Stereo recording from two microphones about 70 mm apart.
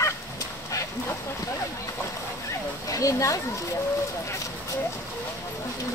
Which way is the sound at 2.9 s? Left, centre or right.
Left.